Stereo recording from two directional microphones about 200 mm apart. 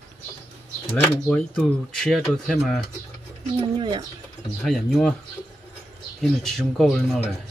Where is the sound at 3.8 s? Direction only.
25° right (ahead or behind).